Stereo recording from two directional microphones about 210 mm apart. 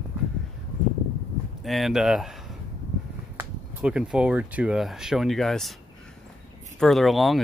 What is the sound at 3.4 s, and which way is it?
Speech, 5° right (ahead or behind).